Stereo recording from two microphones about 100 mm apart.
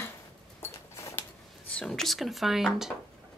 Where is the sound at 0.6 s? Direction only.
25° left (ahead or behind).